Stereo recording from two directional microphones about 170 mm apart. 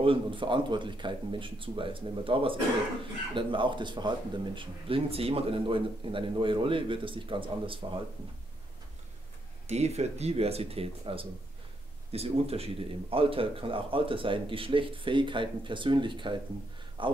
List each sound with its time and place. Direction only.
0.0 s speech: 30° right (ahead or behind)
9.7 s speech: 40° right (ahead or behind)